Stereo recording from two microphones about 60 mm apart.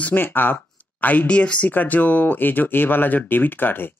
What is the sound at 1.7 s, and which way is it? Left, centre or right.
Speech, left.